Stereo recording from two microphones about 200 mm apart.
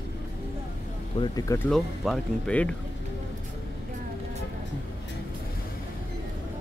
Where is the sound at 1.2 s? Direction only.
15° left (ahead or behind).